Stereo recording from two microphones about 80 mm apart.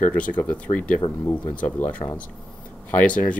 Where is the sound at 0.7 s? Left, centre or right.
Left.